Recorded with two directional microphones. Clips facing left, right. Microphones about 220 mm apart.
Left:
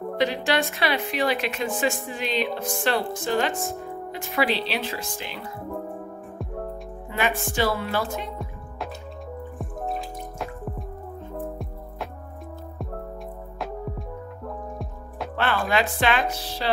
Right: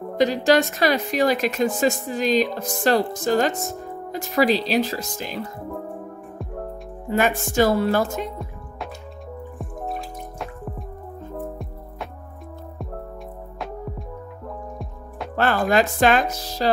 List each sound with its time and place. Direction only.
0.2 s speech: 40° right (ahead or behind)
7.1 s speech: 45° right (ahead or behind)
8.2 s music: centre (ahead or behind)
15.3 s speech: 45° right (ahead or behind)